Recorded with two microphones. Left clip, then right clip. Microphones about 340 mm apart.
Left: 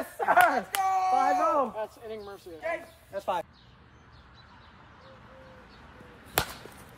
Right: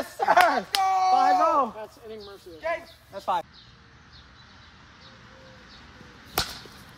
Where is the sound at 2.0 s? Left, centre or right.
Left.